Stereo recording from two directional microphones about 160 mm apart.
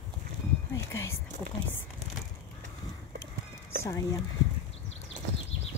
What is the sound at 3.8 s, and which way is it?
Speech, 20° left (ahead or behind).